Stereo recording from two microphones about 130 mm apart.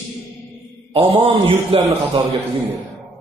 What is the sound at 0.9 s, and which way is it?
Speech, 45° right (ahead or behind).